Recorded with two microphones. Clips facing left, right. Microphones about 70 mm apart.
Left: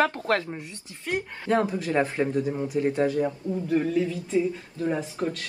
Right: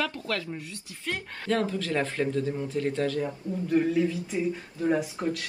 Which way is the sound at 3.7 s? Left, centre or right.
Centre.